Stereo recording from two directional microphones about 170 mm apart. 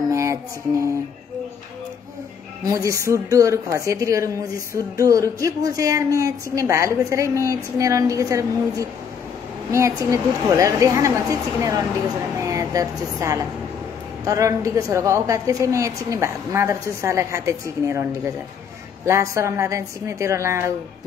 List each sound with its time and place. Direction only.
0.1 s music: 15° right (ahead or behind)
2.6 s a woman's voice: 20° right (ahead or behind)